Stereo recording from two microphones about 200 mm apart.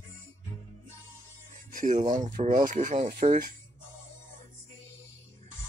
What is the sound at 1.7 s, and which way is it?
Speech, 40° right (ahead or behind).